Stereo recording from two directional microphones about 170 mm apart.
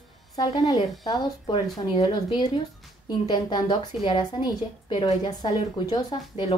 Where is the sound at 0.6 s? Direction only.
25° left (ahead or behind).